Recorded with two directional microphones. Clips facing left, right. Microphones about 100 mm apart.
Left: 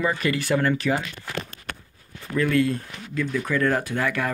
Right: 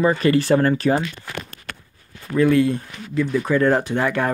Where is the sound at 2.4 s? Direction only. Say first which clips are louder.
Right 5 dB; 20° right (ahead or behind).